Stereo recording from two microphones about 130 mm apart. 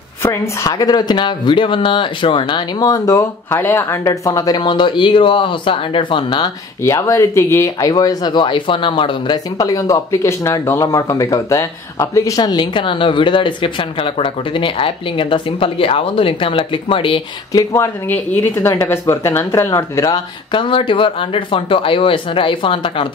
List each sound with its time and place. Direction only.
0.2 s speech: 25° left (ahead or behind)
6.8 s speech: 20° left (ahead or behind); by 17.2 s 40° left (ahead or behind)
17.5 s speech: 25° left (ahead or behind)
20.5 s speech: 40° left (ahead or behind)